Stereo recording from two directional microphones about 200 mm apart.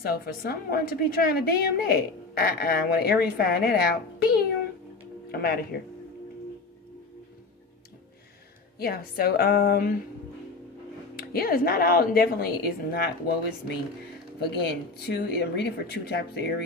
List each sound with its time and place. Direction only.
0.0 s a woman's voice: 50° left (ahead or behind)
8.7 s a woman's voice: 50° left (ahead or behind)
11.1 s a woman's voice: 50° left (ahead or behind)
14.5 s speech: 55° left (ahead or behind)